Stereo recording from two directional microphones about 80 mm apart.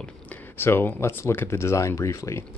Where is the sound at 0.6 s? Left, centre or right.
Left.